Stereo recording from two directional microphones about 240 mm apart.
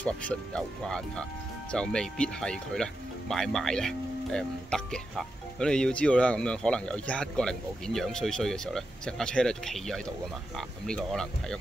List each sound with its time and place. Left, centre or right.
0.0 s speech: centre